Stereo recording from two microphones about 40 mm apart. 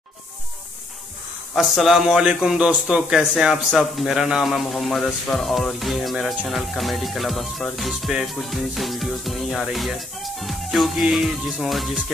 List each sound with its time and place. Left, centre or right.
1.6 s speech: centre
2.2 s speech: centre
3.7 s music: centre
8.1 s speech: centre
8.4 s music: centre